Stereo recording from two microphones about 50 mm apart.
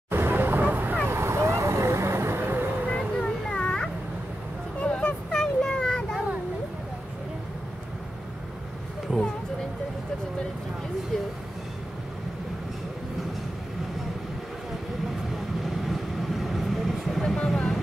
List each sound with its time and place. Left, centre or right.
0.1 s vehicle: right
1.0 s vehicle: right
2.9 s a sound: centre
15.6 s vehicle: centre